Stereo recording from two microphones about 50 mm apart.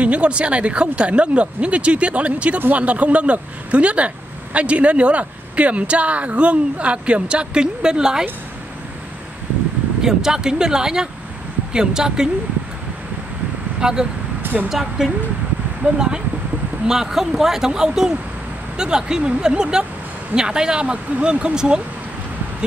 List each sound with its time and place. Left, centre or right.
0.0 s speech: right
10.0 s speech: centre
13.7 s speech: centre
14.4 s vehicle: right
14.7 s speech: centre
15.8 s speech: centre